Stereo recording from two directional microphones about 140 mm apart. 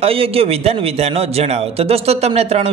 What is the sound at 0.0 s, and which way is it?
A man's voice, 45° right (ahead or behind).